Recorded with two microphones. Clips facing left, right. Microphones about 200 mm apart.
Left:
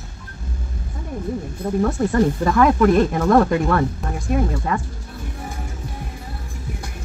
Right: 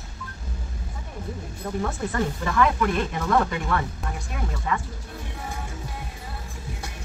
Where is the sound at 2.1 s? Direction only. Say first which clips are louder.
Left 6 dB; 45° left (ahead or behind).